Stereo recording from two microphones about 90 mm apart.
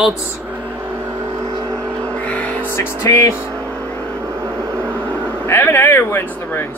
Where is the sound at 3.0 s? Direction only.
35° left (ahead or behind).